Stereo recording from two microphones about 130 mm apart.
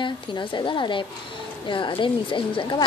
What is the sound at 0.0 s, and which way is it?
Speech, 40° left (ahead or behind).